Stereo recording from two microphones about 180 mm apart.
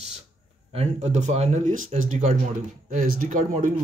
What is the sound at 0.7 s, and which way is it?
Speech, 40° right (ahead or behind).